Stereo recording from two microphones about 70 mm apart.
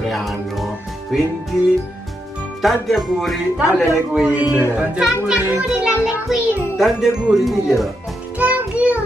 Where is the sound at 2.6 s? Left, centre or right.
Centre.